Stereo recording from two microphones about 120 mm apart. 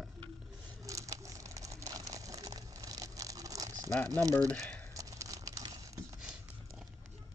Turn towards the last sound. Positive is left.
turn(degrees=-25)  # may be behind; listen again after turning